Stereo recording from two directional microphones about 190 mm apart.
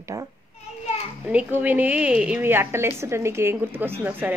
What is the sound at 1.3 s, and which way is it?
Speech, 10° right (ahead or behind).